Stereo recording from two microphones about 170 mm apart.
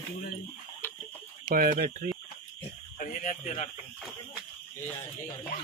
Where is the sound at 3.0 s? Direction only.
50° left (ahead or behind).